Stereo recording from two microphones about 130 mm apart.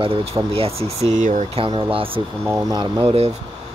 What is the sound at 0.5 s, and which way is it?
Speech, 50° right (ahead or behind).